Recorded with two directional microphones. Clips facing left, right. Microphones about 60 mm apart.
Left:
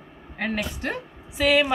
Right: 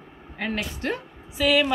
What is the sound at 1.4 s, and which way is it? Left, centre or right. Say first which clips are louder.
Speech: left 1 dB; centre.